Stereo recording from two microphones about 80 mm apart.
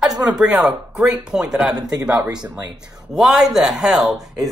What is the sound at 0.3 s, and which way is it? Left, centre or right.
Speech, centre.